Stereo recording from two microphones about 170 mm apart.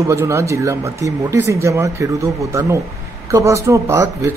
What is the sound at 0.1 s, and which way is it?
Speech, 15° right (ahead or behind).